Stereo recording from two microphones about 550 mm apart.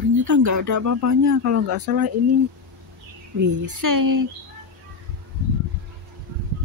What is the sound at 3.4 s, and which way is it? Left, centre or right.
Speech, right.